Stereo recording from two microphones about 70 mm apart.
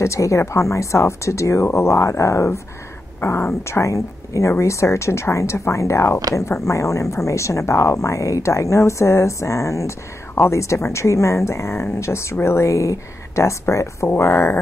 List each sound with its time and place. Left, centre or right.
0.0 s speech: left